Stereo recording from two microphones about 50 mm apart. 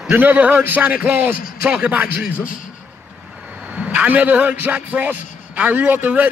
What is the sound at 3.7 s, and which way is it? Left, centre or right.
A man's voice, right.